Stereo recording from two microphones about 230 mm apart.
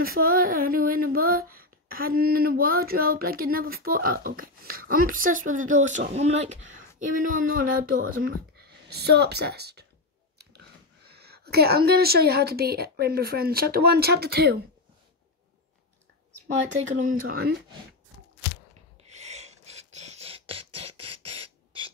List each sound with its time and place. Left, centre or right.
0.0 s a sound: right
8.2 s speech: right
11.1 s a woman's voice: right
16.9 s a sound: right
17.3 s a woman's voice: right
19.1 s beatboxing: right